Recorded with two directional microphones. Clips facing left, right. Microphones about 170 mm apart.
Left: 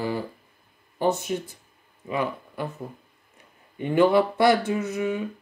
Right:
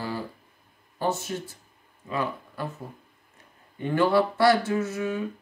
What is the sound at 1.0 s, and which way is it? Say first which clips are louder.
Speech: left 4 dB; 15° left (ahead or behind).